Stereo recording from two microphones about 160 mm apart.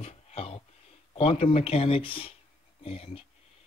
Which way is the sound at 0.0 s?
40° left (ahead or behind).